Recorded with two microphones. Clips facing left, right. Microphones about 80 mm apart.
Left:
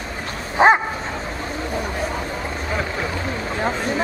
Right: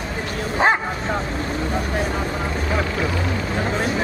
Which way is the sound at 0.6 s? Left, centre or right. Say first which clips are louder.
Left 4 dB; centre.